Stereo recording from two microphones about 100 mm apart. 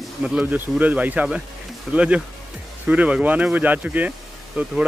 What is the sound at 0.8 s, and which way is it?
Speech, 15° right (ahead or behind).